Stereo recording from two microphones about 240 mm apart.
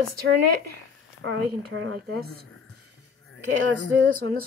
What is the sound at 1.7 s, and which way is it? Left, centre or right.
Speech, right.